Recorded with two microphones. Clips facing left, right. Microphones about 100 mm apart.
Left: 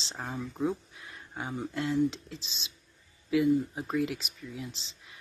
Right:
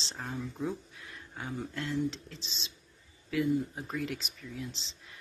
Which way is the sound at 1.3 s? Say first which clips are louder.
Left 3 dB; 25° left (ahead or behind).